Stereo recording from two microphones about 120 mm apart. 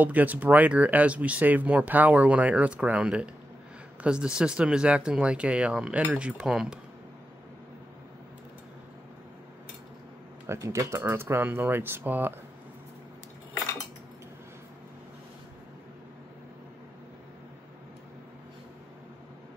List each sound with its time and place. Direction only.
0.0 s speech: 15° right (ahead or behind)
10.4 s speech: 25° right (ahead or behind)